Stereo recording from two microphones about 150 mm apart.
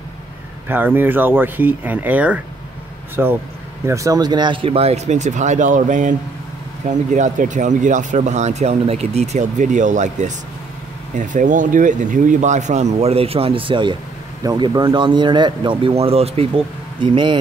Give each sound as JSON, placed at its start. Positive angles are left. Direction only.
{"t": 0.7, "sound": "speech", "side_deg": -15}
{"t": 3.8, "sound": "speech", "side_deg": -20}